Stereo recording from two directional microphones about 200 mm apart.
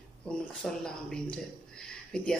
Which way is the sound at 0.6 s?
5° left (ahead or behind).